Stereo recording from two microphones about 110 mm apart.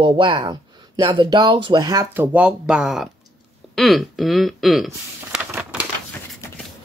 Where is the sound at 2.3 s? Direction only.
10° right (ahead or behind).